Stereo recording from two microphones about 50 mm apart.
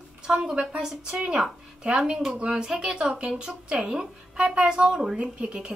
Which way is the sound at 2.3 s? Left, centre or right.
Right.